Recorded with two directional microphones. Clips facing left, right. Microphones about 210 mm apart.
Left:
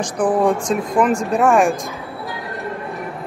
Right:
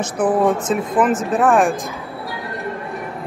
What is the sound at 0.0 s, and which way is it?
Speech, 5° right (ahead or behind).